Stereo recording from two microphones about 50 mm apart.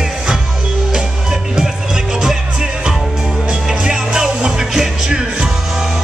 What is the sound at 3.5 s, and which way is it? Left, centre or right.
Music, centre.